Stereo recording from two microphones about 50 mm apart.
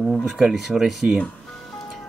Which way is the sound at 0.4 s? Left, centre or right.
Centre.